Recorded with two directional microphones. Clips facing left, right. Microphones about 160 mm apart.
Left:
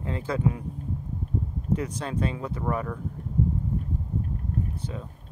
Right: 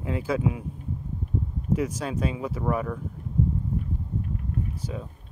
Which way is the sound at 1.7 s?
10° right (ahead or behind).